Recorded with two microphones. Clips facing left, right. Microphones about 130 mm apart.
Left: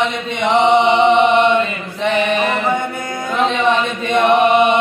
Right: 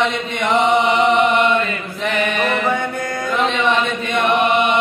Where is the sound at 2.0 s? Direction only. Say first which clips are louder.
Left 4 dB; 30° left (ahead or behind).